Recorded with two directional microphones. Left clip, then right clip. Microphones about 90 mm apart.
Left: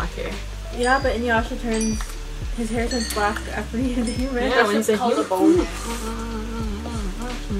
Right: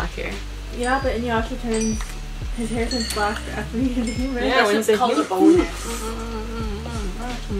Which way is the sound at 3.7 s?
45° left (ahead or behind).